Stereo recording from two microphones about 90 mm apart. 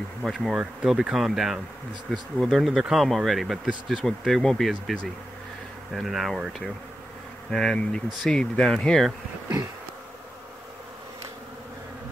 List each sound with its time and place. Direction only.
0.2 s speech: centre (ahead or behind)
5.9 s speech: centre (ahead or behind)